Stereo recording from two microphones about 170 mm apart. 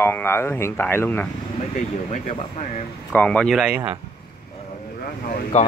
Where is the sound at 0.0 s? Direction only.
15° left (ahead or behind).